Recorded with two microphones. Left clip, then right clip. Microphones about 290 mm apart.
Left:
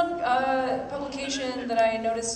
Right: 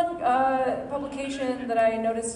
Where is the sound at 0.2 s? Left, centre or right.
Right.